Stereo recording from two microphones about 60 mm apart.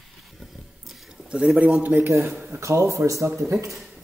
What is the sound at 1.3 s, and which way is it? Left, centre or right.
Speech, centre.